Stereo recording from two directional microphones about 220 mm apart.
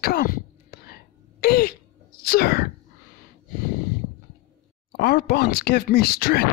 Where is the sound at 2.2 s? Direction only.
45° left (ahead or behind).